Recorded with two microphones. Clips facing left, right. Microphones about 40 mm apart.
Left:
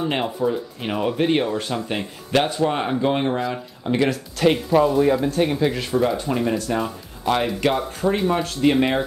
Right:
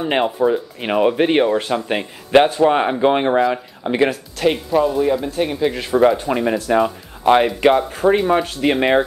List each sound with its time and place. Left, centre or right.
0.0 s speech: right
4.4 s speech: centre
5.9 s speech: right